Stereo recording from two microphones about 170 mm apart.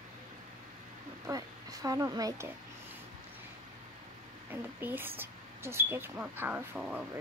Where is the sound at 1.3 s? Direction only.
20° right (ahead or behind).